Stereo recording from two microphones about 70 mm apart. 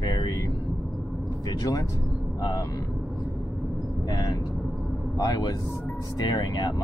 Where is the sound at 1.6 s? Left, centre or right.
Left.